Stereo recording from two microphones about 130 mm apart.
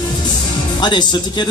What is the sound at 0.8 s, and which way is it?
Speech, 35° left (ahead or behind).